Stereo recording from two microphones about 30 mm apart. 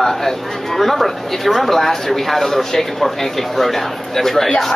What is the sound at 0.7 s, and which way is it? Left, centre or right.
A woman's voice, centre.